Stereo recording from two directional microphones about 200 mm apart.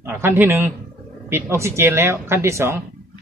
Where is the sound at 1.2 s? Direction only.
10° right (ahead or behind).